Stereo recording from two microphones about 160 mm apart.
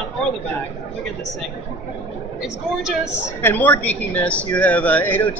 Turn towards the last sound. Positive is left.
turn(degrees=10)  # may be behind; listen again after turning